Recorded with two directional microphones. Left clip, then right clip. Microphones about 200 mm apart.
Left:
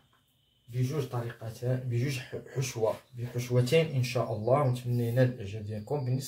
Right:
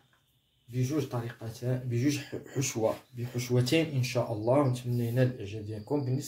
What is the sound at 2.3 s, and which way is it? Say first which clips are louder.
Speech: right 2 dB; 25° right (ahead or behind).